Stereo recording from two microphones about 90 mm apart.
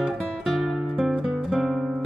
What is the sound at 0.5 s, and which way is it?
Music, centre (ahead or behind).